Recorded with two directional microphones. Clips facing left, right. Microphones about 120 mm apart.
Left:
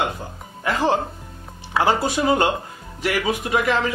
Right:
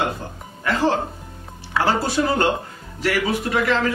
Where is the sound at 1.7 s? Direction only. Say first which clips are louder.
Left 1 dB; 15° left (ahead or behind).